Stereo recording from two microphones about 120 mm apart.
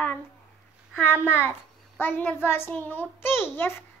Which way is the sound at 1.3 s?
20° left (ahead or behind).